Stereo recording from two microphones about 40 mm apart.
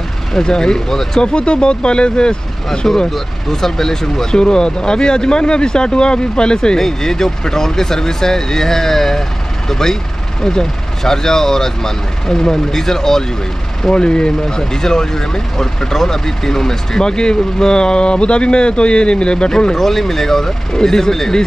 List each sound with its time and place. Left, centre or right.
0.3 s speech: centre
1.2 s speech: left
3.1 s speech: centre
13.8 s speech: left